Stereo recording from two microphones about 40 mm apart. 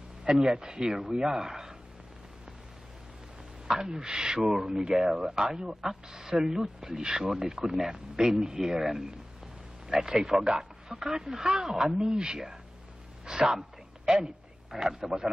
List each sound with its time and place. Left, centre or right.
0.4 s speech: centre
3.6 s speech: centre
10.4 s speech: centre
10.9 s speech: centre
11.9 s speech: centre
13.3 s a sound: centre
14.1 s speech: centre
15.0 s speech: right